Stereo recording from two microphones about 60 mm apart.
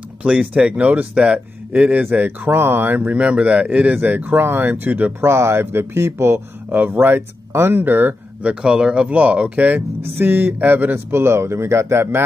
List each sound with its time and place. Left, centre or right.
0.2 s speech: centre; by 3.1 s right
3.1 s speech: right
4.0 s speech: right
5.2 s speech: right
6.9 s speech: right
8.6 s speech: centre
9.8 s speech: right
11.1 s speech: right